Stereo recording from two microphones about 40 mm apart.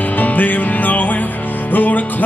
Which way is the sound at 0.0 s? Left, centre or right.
Left.